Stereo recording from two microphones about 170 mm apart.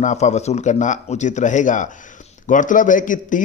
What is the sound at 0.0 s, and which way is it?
A man's voice, 45° left (ahead or behind).